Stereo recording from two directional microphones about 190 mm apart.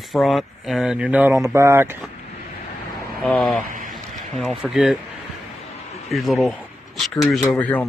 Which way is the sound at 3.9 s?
Centre (ahead or behind).